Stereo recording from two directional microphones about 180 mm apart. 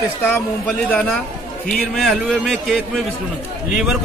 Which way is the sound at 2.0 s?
Centre (ahead or behind).